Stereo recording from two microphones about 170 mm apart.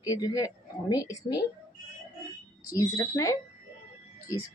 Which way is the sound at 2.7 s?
20° left (ahead or behind).